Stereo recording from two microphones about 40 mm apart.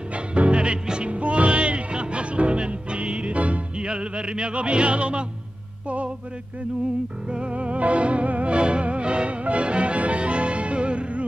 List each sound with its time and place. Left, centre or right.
0.1 s music: right
3.7 s music: right
7.2 s music: right